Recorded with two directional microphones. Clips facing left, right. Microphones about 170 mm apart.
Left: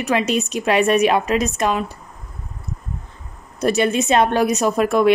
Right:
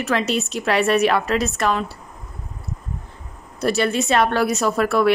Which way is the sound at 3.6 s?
20° left (ahead or behind).